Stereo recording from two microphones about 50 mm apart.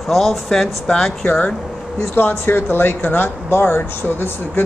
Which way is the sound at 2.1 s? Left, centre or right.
Left.